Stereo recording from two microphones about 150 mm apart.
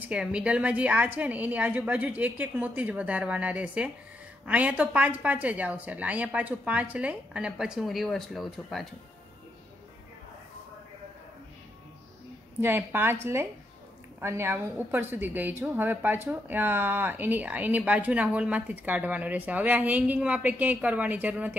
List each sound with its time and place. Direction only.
0.0 s a woman's voice: 5° right (ahead or behind)
12.5 s a woman's voice: 15° right (ahead or behind)